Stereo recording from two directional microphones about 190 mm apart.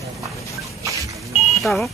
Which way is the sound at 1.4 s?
Centre (ahead or behind).